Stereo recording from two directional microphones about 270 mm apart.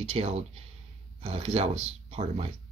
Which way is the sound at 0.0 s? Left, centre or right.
Right.